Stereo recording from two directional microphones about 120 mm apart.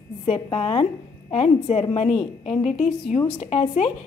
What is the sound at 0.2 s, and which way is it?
A woman's voice, 55° left (ahead or behind).